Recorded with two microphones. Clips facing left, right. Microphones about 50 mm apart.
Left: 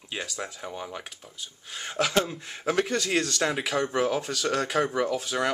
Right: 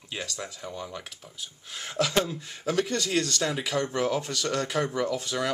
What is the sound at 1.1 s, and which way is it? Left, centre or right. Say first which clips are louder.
Speech: even; centre.